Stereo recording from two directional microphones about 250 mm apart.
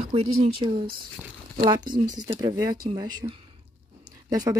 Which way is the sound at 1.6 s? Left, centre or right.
Centre.